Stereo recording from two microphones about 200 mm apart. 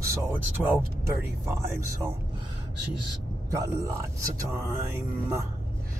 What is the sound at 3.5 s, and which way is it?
Speech, 15° right (ahead or behind).